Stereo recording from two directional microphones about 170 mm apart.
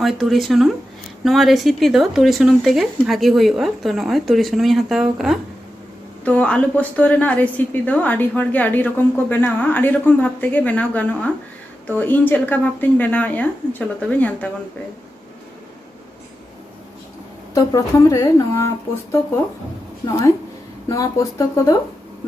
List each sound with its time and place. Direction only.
0.0 s a woman's voice: centre (ahead or behind)
17.6 s speech: 20° left (ahead or behind)
20.1 s speech: 20° left (ahead or behind)